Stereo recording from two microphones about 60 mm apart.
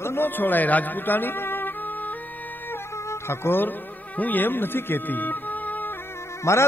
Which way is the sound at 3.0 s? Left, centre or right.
Left.